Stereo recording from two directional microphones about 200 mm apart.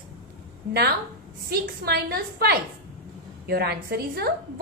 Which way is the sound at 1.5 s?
50° right (ahead or behind).